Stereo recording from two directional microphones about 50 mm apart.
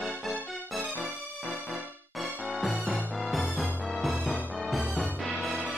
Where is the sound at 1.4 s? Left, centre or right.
Centre.